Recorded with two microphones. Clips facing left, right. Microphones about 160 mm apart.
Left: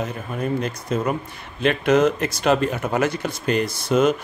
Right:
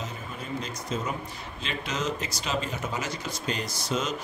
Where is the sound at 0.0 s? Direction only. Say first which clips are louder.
Left 11 dB; 60° left (ahead or behind).